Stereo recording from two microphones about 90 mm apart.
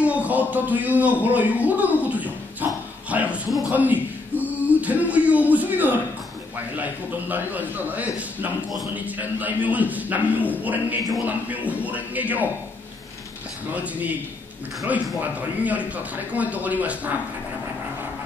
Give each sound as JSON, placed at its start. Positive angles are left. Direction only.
{"t": 0.0, "sound": "music", "side_deg": -15}
{"t": 1.2, "sound": "a sound", "side_deg": -15}
{"t": 6.8, "sound": "a man's voice", "side_deg": -20}
{"t": 15.1, "sound": "speech", "side_deg": -20}